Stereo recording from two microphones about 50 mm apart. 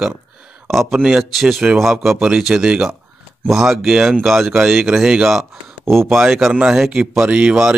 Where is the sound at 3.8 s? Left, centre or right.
Centre.